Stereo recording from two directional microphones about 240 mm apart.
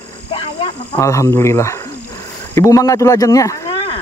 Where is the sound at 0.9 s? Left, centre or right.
Centre.